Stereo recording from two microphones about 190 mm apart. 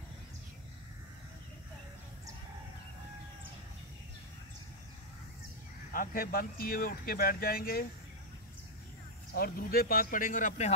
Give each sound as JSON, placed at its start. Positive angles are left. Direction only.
{"t": 5.9, "sound": "speech", "side_deg": 50}
{"t": 9.3, "sound": "speech", "side_deg": 50}